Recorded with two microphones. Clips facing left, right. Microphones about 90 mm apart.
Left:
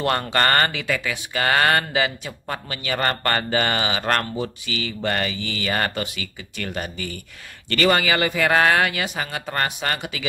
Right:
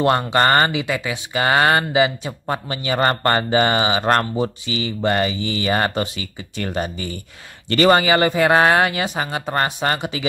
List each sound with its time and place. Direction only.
0.0 s speech: 20° right (ahead or behind)